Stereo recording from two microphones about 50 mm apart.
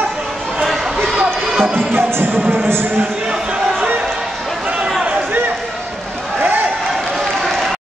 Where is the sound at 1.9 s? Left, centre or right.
Right.